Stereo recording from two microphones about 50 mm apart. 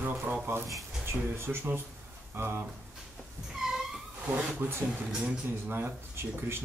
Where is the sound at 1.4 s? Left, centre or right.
Right.